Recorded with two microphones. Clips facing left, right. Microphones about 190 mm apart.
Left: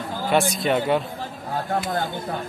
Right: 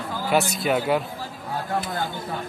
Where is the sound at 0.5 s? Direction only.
5° right (ahead or behind).